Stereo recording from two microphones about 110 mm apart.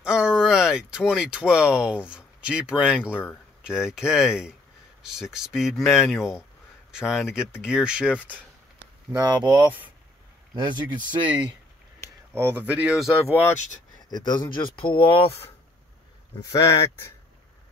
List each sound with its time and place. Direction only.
0.0 s speech: 10° right (ahead or behind)
9.1 s speech: 40° right (ahead or behind)
11.1 s speech: 15° right (ahead or behind)
14.1 s speech: 40° left (ahead or behind); by 15.4 s 60° left (ahead or behind)
16.3 s speech: 30° left (ahead or behind)